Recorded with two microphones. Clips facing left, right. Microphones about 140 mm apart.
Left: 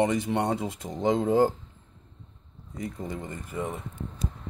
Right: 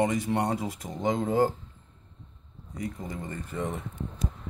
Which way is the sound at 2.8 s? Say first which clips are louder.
Left 1 dB; 25° left (ahead or behind).